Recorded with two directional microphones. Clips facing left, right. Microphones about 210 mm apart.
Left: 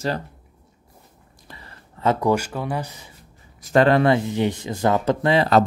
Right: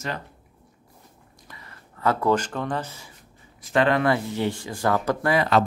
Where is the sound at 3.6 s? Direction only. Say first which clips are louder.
Left 5 dB; 40° left (ahead or behind).